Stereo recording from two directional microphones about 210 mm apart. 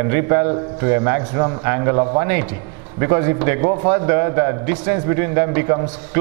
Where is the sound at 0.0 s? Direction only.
15° right (ahead or behind).